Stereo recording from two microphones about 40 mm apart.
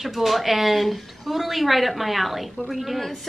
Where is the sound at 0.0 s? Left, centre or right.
Centre.